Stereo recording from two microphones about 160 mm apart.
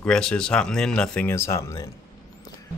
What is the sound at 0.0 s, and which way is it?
Speech, 5° left (ahead or behind).